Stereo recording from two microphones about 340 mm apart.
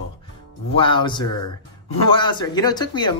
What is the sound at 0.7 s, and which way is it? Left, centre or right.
Speech, centre.